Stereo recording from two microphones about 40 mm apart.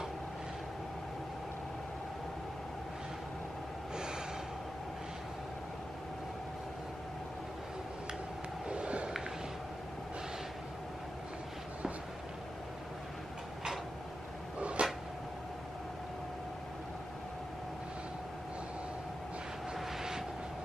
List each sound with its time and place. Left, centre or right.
3.9 s gasp: centre
8.6 s vehicle: right
14.6 s a sound: right
19.8 s vehicle: centre